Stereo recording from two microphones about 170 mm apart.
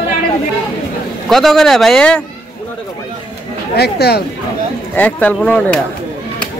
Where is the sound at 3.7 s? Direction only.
70° left (ahead or behind).